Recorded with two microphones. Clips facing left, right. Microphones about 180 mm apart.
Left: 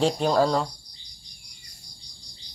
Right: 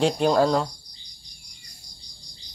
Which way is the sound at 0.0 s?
Centre (ahead or behind).